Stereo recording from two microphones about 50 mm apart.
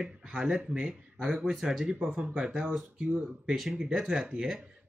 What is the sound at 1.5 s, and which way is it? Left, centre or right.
Speech, centre.